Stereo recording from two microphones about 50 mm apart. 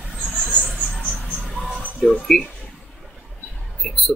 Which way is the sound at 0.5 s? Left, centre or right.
Left.